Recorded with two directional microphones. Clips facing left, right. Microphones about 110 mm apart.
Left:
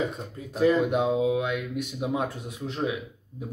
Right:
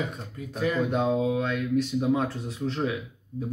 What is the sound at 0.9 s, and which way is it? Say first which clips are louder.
Speech: left 1 dB; 10° left (ahead or behind).